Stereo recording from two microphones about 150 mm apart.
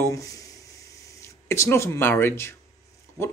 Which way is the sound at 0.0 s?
20° left (ahead or behind).